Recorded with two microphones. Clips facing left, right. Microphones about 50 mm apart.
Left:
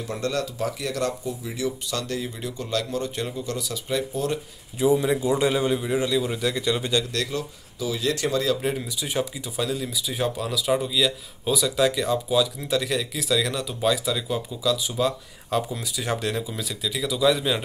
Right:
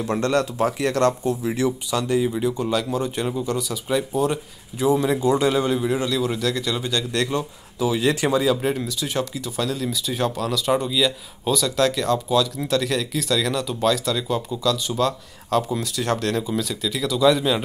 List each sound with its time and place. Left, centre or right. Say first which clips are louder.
0.0 s speech: right 6 dB; right
1.9 s speech: right 8 dB; centre
3.5 s speech: right 4 dB; centre
5.0 s speech: right 3 dB; centre
7.1 s speech: right 5 dB; right
8.2 s speech: right 4 dB; centre
8.7 s speech: right 2 dB; centre